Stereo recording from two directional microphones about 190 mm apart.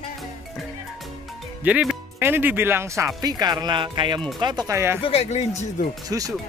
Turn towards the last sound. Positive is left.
turn(degrees=-20)  # may be behind; listen again after turning